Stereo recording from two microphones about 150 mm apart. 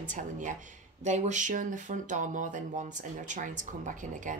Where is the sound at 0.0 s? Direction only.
60° right (ahead or behind).